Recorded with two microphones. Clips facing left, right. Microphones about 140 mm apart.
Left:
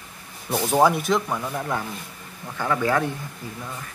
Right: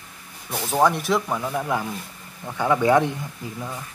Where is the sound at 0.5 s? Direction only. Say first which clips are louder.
Left 2 dB; 15° left (ahead or behind); by 1.8 s 5° right (ahead or behind).